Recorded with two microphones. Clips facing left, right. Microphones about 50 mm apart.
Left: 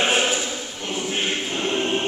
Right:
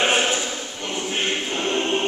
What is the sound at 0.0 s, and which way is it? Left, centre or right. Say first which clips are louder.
Choir: right 1 dB; centre.